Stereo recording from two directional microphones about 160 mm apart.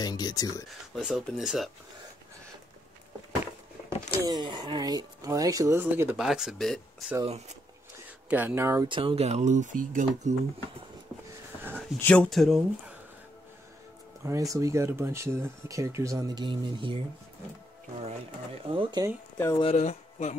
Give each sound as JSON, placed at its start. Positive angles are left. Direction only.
{"t": 0.0, "sound": "speech", "side_deg": 25}
{"t": 0.9, "sound": "speech", "side_deg": 0}
{"t": 4.2, "sound": "speech", "side_deg": -25}
{"t": 6.1, "sound": "speech", "side_deg": -5}
{"t": 7.2, "sound": "speech", "side_deg": -45}
{"t": 8.3, "sound": "speech", "side_deg": -10}
{"t": 8.8, "sound": "speech", "side_deg": -30}
{"t": 12.0, "sound": "speech", "side_deg": 10}
{"t": 14.2, "sound": "speech", "side_deg": -20}
{"t": 18.0, "sound": "speech", "side_deg": -35}
{"t": 19.3, "sound": "speech", "side_deg": 15}
{"t": 19.6, "sound": "speech", "side_deg": 40}